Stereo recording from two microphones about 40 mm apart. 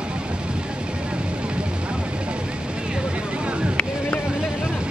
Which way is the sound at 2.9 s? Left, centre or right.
Right.